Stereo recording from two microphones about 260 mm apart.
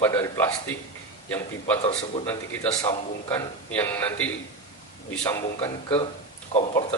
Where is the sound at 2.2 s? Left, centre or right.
Centre.